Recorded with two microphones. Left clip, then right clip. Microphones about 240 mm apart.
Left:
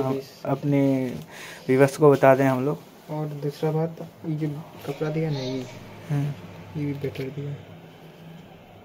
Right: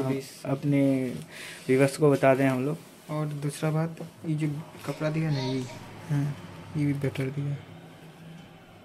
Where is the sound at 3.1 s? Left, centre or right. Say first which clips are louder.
Left 3 dB; right.